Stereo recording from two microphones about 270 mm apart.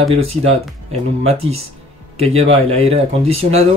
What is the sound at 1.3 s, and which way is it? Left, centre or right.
Speech, right.